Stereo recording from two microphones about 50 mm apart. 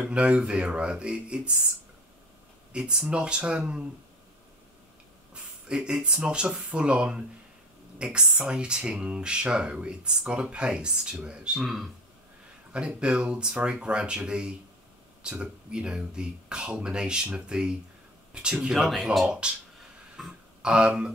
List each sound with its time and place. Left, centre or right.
0.1 s speech: right
2.7 s speech: centre
5.3 s speech: centre
11.6 s a man's voice: centre
12.7 s speech: right
18.7 s speech: centre
19.4 s speech: right
20.2 s speech: centre
20.6 s speech: centre